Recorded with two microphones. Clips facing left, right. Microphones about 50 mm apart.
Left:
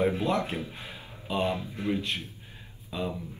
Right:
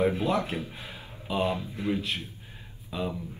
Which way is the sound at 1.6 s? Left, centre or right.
Left.